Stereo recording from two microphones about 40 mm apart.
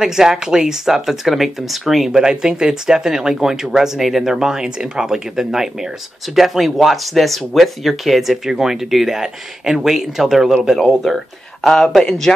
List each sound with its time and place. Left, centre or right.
0.0 s speech: centre
11.6 s speech: centre